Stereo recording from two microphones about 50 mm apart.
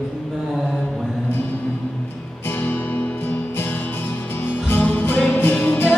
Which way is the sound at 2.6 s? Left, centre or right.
Left.